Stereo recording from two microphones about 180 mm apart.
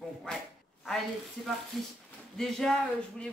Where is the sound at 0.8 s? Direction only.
Centre (ahead or behind).